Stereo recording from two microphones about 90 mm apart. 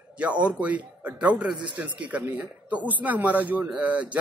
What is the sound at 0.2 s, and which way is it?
Speech, 15° right (ahead or behind).